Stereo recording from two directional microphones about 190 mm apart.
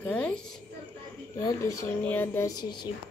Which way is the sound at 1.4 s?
15° left (ahead or behind).